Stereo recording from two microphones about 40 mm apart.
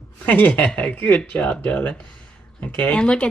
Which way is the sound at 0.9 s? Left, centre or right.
Left.